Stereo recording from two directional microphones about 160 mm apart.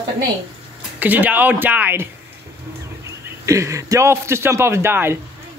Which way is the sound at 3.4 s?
20° right (ahead or behind).